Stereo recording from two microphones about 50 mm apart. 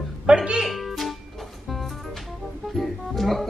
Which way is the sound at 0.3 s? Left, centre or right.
Centre.